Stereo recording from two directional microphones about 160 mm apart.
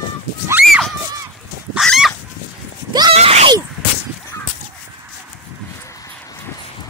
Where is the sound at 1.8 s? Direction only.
5° left (ahead or behind).